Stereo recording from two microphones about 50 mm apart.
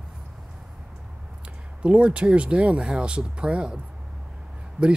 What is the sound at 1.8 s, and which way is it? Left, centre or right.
Speech, right.